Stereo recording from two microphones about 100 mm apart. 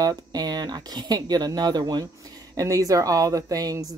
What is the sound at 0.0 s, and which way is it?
A woman's voice, 40° right (ahead or behind).